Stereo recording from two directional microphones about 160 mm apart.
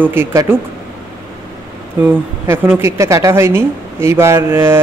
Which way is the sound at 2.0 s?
15° right (ahead or behind).